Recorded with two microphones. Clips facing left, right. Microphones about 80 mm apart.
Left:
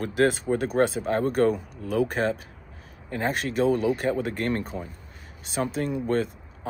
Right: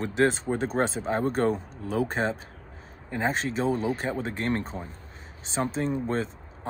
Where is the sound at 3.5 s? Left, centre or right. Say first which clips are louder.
Left 4 dB; right.